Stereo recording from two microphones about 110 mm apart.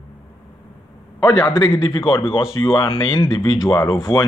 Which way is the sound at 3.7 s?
35° left (ahead or behind).